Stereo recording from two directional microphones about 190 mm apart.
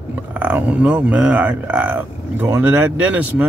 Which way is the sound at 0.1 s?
10° right (ahead or behind).